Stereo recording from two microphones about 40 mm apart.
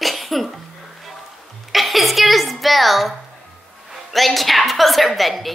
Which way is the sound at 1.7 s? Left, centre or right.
Centre.